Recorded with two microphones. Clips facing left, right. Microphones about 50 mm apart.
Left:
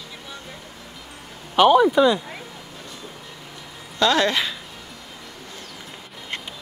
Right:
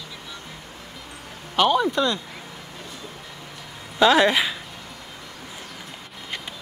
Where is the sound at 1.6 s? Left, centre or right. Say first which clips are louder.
Left 5 dB; centre.